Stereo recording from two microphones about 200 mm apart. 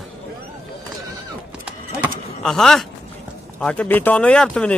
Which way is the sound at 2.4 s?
Centre (ahead or behind).